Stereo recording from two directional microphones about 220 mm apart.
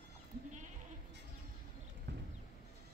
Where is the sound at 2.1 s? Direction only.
50° right (ahead or behind).